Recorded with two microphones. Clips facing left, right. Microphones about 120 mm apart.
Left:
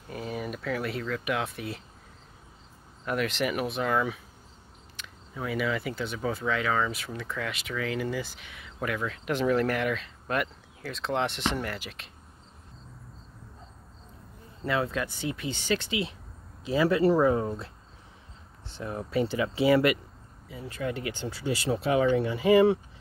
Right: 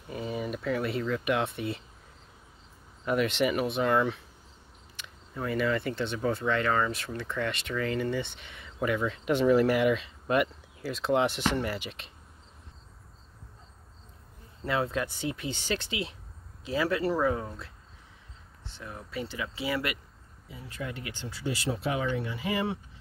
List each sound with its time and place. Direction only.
0.1 s speech: centre (ahead or behind)
3.1 s speech: centre (ahead or behind)
14.9 s speech: 10° right (ahead or behind)
15.2 s speech: 15° left (ahead or behind)
17.0 s speech: 25° left (ahead or behind)
18.8 s speech: 40° left (ahead or behind); by 21.1 s 60° left (ahead or behind)
21.1 s speech: 35° left (ahead or behind)